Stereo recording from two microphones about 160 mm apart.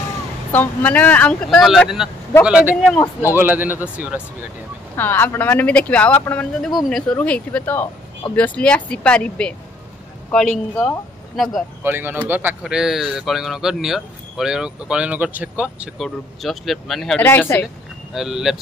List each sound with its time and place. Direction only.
0.5 s speech: 10° left (ahead or behind); by 2.8 s 10° right (ahead or behind)
3.0 s speech: 15° left (ahead or behind)
3.3 s speech: 10° right (ahead or behind)
4.9 s speech: 10° left (ahead or behind)
11.8 s speech: 10° right (ahead or behind)
17.2 s speech: 15° left (ahead or behind)
18.1 s speech: centre (ahead or behind)